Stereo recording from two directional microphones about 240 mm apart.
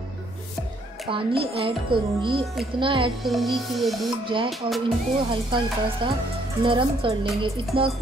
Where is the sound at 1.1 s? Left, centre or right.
Right.